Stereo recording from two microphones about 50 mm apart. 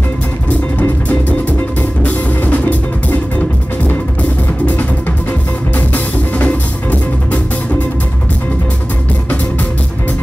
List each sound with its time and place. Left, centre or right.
2.0 s music: left
5.8 s music: left